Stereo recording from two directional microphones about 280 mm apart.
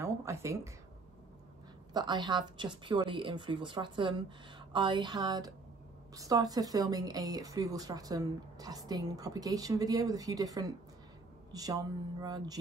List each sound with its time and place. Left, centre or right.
0.0 s speech: centre
2.0 s speech: centre